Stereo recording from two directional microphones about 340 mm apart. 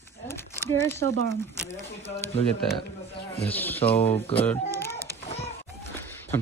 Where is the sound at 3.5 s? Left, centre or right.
Centre.